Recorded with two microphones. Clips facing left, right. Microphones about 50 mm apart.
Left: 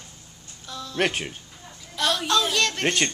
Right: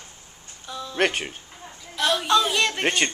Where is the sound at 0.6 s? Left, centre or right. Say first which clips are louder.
Right 2 dB; centre.